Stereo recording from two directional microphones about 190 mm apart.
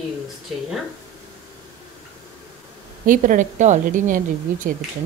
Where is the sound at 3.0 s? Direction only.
45° right (ahead or behind).